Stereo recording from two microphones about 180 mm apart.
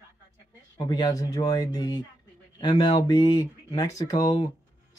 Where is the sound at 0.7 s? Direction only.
20° left (ahead or behind).